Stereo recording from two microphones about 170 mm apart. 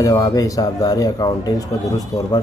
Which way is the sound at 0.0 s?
20° left (ahead or behind).